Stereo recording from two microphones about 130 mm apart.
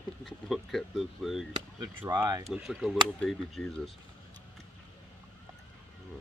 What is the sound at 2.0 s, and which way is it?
Speech, 25° right (ahead or behind).